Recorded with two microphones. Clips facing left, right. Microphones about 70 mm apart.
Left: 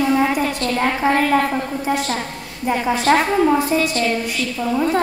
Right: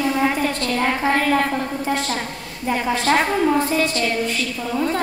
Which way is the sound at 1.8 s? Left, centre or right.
Centre.